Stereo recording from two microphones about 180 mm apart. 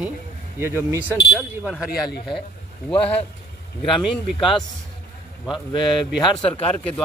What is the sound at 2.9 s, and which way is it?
Speech, 30° left (ahead or behind).